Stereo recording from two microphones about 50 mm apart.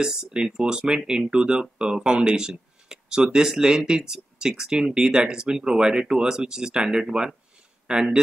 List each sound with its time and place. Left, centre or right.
0.0 s speech: centre